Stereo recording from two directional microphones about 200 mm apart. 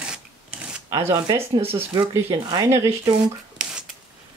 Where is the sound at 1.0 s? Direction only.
15° right (ahead or behind).